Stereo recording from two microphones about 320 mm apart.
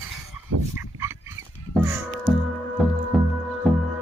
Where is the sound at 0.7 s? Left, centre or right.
Centre.